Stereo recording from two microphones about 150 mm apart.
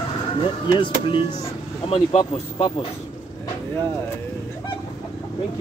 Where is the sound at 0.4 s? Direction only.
35° left (ahead or behind).